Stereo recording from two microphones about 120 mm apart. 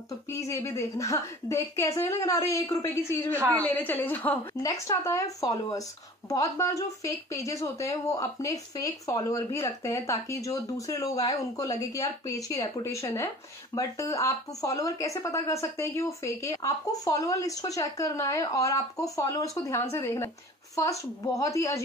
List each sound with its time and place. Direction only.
0.3 s a woman's voice: 25° left (ahead or behind)
4.6 s speech: 25° left (ahead or behind)